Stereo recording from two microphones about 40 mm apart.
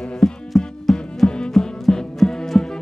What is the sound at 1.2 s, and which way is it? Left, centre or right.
Music, left.